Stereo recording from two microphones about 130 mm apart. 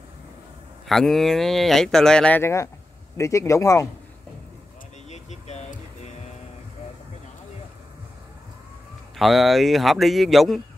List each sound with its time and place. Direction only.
0.8 s speech: centre (ahead or behind)
2.4 s speech: 25° left (ahead or behind)
5.1 s music: 60° left (ahead or behind)
9.1 s speech: centre (ahead or behind)